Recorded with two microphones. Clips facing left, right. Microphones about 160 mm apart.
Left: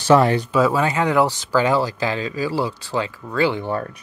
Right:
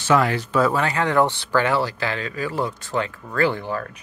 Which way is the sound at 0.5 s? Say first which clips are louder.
Left 2 dB; 10° left (ahead or behind).